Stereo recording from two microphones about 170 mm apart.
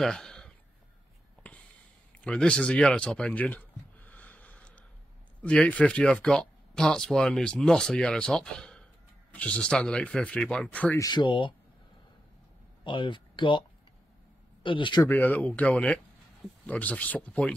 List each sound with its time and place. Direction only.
0.0 s a sound: 5° left (ahead or behind)
1.5 s snort: 10° left (ahead or behind)
2.1 s a sound: 5° left (ahead or behind)
5.4 s speech: 5° left (ahead or behind)
11.0 s speech: 25° left (ahead or behind)
12.8 s speech: 30° left (ahead or behind)
14.6 s speech: 30° left (ahead or behind)
15.0 s speech: 10° left (ahead or behind)